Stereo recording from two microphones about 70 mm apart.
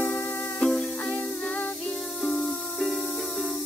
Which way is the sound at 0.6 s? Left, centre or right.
Centre.